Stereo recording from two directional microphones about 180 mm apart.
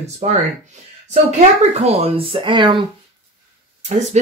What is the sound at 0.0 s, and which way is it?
Speech, 35° right (ahead or behind).